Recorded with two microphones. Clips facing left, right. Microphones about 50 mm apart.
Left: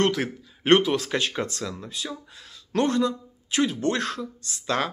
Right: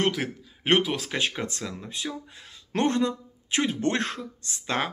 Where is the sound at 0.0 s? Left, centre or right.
Centre.